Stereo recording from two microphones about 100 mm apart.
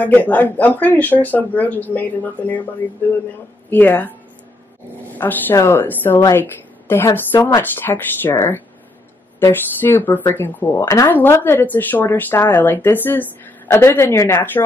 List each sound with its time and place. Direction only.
0.0 s speech: 15° left (ahead or behind)
3.7 s speech: 20° left (ahead or behind)
5.1 s a woman's voice: 20° left (ahead or behind)